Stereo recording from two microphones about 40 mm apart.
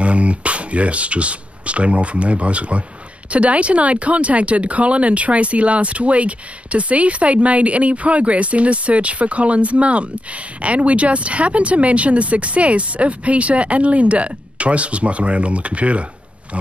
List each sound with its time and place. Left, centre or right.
0.0 s speech: right